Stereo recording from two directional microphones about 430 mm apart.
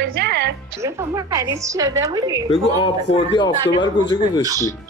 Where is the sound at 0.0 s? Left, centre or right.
Right.